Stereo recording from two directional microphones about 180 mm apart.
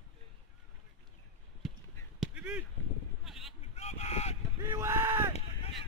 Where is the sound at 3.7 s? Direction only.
35° left (ahead or behind).